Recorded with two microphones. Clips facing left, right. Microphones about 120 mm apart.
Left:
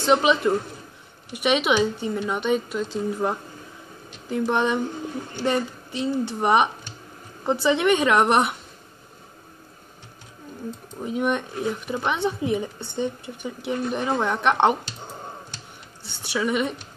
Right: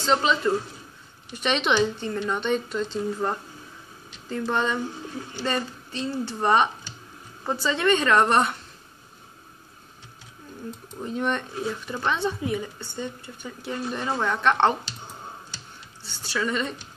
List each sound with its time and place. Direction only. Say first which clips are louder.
0.0 s speech: left 3 dB; 15° left (ahead or behind)
11.0 s speech: left 3 dB; 10° left (ahead or behind)
16.0 s a woman's voice: left 2 dB; 15° left (ahead or behind)